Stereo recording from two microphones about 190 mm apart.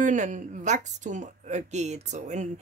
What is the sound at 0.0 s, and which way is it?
Speech, 40° right (ahead or behind).